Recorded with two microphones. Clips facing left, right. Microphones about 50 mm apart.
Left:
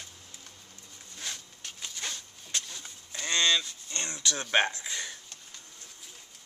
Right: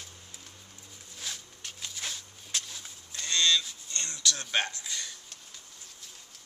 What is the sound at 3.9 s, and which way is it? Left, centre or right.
Speech, left.